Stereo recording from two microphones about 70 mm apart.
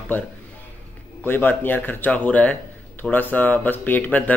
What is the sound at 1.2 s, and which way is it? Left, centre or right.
Speech, left.